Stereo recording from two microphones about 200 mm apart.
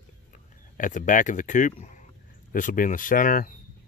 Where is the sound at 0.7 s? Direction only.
40° left (ahead or behind).